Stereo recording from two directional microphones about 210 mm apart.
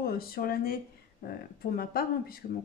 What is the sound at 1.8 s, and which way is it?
Speech, 45° left (ahead or behind).